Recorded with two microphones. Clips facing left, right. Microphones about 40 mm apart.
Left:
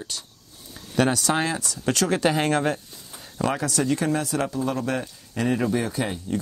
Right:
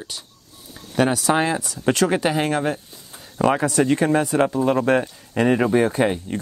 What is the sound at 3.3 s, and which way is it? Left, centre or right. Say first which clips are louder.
Speech: right 6 dB; right.